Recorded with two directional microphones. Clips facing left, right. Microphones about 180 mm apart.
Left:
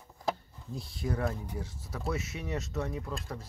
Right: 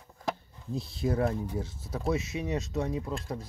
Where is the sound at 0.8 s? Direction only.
25° right (ahead or behind).